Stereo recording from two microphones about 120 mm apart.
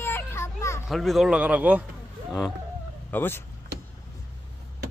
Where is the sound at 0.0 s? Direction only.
20° left (ahead or behind).